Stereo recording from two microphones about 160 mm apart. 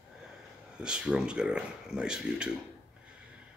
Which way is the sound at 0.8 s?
5° right (ahead or behind).